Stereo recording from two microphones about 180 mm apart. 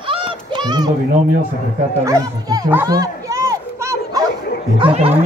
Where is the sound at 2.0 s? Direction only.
20° right (ahead or behind).